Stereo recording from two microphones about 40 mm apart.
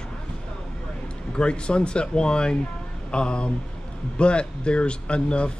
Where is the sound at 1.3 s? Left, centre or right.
Left.